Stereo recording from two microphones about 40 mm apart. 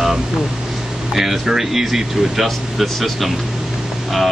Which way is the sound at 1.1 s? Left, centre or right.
Centre.